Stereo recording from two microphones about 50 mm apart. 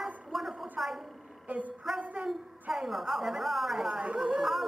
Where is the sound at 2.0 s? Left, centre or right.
Right.